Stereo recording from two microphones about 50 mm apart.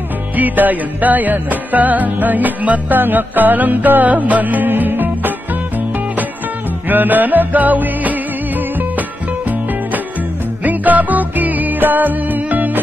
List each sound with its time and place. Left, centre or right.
0.4 s music: right
6.9 s music: right
10.6 s music: right